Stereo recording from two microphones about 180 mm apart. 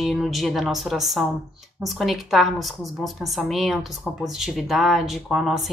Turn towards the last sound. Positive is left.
turn(degrees=0)  # may be behind; listen again after turning